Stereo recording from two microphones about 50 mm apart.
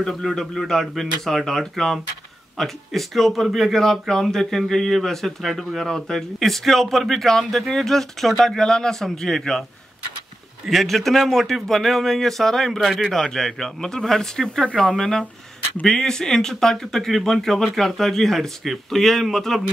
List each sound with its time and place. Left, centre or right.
0.3 s speech: centre
10.7 s speech: centre